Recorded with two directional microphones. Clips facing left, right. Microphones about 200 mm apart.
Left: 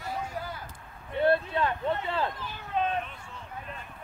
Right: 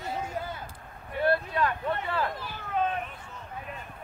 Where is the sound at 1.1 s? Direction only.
25° left (ahead or behind).